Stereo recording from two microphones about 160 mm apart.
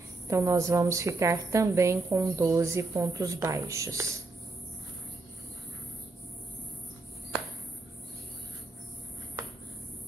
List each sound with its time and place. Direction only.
0.3 s a woman's voice: 20° right (ahead or behind)